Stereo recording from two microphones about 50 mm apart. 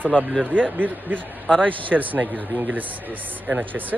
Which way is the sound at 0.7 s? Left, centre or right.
Right.